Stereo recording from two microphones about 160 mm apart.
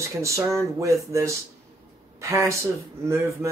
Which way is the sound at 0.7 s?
20° right (ahead or behind).